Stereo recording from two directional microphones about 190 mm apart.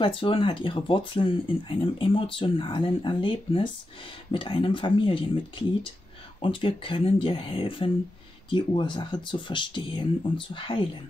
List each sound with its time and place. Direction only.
0.0 s speech: 30° left (ahead or behind)